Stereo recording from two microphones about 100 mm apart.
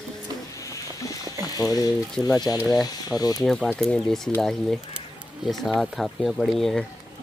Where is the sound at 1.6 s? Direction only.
35° left (ahead or behind).